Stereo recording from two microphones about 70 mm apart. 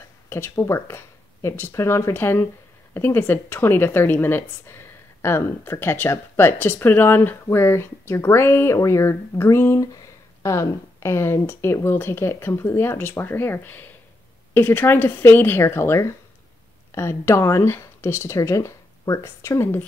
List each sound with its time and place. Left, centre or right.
0.3 s a woman's voice: left
8.7 s a woman's voice: left